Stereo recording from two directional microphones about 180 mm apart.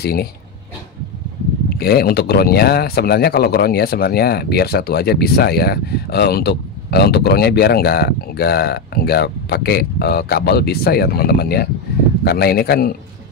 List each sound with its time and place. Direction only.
0.0 s speech: 60° left (ahead or behind)
1.8 s speech: 60° left (ahead or behind)